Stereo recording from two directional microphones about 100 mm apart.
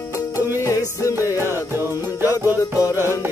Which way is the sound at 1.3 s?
25° right (ahead or behind).